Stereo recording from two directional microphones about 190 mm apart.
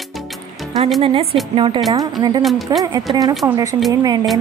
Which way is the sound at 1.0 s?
30° right (ahead or behind).